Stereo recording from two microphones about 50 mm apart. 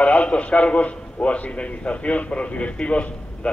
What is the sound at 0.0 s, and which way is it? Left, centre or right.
A man's voice, left.